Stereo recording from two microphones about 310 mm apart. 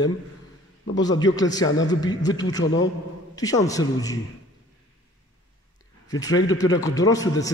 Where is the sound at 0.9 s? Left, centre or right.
Centre.